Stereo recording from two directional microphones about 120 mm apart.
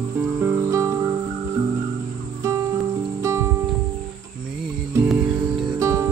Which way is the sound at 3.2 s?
25° right (ahead or behind).